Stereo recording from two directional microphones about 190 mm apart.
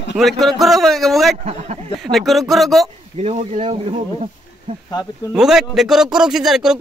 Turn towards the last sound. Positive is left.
turn(degrees=-5)  # may be behind; listen again after turning